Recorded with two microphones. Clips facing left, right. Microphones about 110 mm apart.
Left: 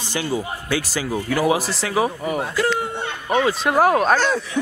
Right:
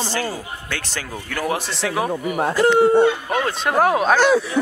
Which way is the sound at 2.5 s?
30° right (ahead or behind).